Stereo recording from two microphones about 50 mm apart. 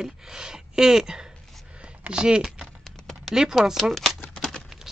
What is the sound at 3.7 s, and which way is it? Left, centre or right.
Speech, centre.